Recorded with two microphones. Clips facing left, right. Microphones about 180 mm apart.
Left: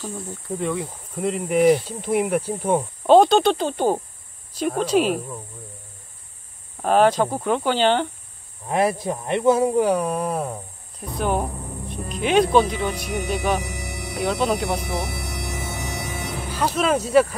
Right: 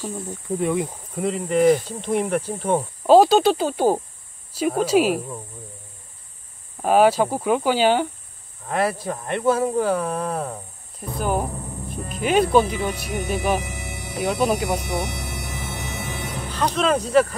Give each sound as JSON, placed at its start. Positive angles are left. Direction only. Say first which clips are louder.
{"t": 0.0, "sound": "speech", "louder": "right 2 dB", "side_deg": -10}
{"t": 1.2, "sound": "speech", "louder": "even", "side_deg": 10}
{"t": 3.1, "sound": "speech", "louder": "even", "side_deg": -5}
{"t": 6.8, "sound": "speech", "louder": "right 1 dB", "side_deg": -5}
{"t": 8.6, "sound": "speech", "louder": "left 2 dB", "side_deg": 15}
{"t": 11.0, "sound": "speech", "louder": "even", "side_deg": -5}
{"t": 16.4, "sound": "speech", "louder": "even", "side_deg": 10}